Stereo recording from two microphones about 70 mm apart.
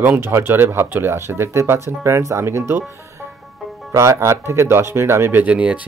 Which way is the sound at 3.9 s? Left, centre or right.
Right.